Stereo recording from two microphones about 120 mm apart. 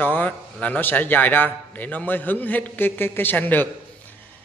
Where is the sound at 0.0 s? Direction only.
15° left (ahead or behind).